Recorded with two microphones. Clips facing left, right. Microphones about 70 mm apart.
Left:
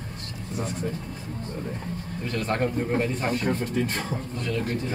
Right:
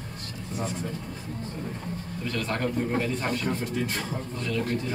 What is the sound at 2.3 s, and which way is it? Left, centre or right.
Speech, left.